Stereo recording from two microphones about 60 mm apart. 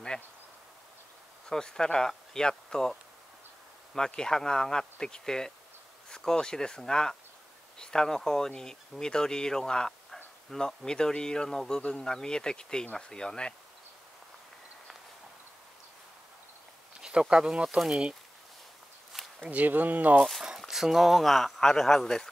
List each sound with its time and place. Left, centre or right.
1.5 s speech: centre
17.0 s speech: centre
19.4 s speech: right
20.4 s speech: centre